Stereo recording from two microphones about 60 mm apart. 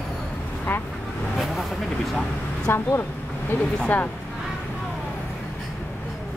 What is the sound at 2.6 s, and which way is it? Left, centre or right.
Speech, left.